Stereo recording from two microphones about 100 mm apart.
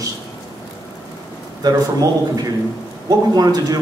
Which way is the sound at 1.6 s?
40° right (ahead or behind).